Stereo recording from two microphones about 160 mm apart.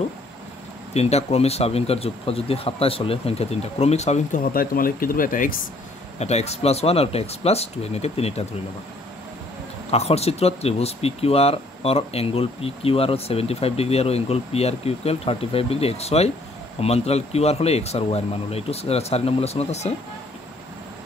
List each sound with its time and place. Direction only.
0.9 s speech: 40° left (ahead or behind); by 5.6 s 60° left (ahead or behind)
6.1 s speech: 40° left (ahead or behind)
9.8 s speech: 40° left (ahead or behind)